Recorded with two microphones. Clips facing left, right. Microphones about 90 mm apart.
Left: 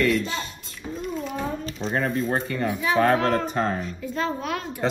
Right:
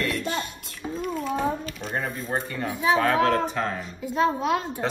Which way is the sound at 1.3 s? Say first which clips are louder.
Right 7 dB; 15° right (ahead or behind).